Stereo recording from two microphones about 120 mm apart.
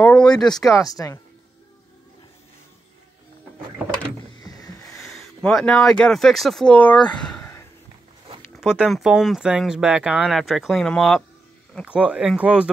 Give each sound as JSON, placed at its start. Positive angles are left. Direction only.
{"t": 0.0, "sound": "speech", "side_deg": 10}
{"t": 0.7, "sound": "speech", "side_deg": 30}
{"t": 4.4, "sound": "rowboat", "side_deg": 30}
{"t": 4.9, "sound": "speech", "side_deg": 0}
{"t": 8.5, "sound": "speech", "side_deg": -5}
{"t": 11.8, "sound": "speech", "side_deg": -10}